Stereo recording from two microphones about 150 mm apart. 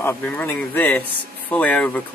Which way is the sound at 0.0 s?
10° left (ahead or behind).